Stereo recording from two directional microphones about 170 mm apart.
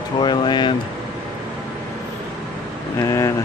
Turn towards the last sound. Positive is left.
turn(degrees=20)  # may be behind; listen again after turning